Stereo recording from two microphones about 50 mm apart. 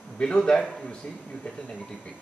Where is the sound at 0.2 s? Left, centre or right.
Centre.